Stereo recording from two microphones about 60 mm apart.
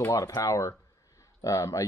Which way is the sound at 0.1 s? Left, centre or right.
Left.